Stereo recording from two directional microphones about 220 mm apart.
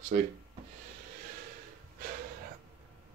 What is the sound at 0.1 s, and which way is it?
Speech, 40° right (ahead or behind).